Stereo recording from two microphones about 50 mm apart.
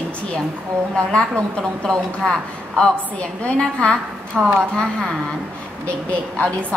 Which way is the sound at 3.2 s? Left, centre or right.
Left.